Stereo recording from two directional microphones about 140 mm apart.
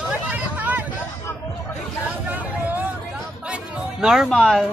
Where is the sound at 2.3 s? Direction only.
10° right (ahead or behind).